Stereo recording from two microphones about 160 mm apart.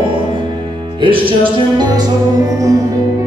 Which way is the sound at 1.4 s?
25° right (ahead or behind).